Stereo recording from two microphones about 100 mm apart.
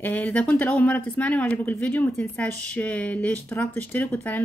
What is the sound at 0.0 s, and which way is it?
Speech, 15° left (ahead or behind).